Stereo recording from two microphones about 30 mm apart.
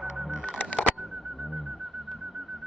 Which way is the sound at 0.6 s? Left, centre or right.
Left.